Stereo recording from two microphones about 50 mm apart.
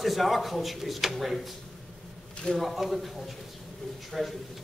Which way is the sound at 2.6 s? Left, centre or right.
Centre.